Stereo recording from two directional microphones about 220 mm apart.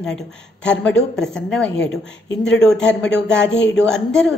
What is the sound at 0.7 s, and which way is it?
A woman's voice, 5° left (ahead or behind).